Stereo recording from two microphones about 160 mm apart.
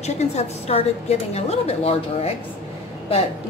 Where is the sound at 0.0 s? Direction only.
45° left (ahead or behind).